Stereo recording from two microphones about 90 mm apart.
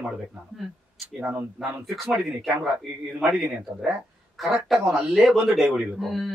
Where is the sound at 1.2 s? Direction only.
10° right (ahead or behind).